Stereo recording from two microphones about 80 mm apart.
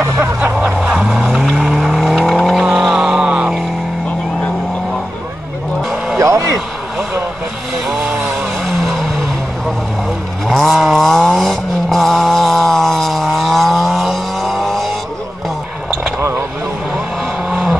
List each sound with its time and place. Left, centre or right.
0.8 s vehicle: centre
3.0 s a sound: centre
6.1 s vehicle: right
7.9 s chainsaw: centre
10.5 s vehicle: centre
16.2 s a sound: right
17.5 s vehicle: centre